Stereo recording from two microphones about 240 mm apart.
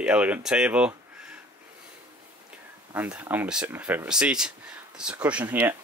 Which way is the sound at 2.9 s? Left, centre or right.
Centre.